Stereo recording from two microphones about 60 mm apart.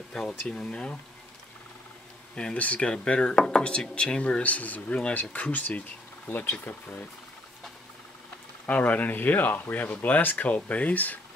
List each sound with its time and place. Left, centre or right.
0.1 s speech: centre
2.3 s speech: centre
8.6 s speech: left